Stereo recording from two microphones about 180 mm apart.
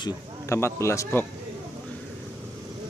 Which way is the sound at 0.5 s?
15° left (ahead or behind).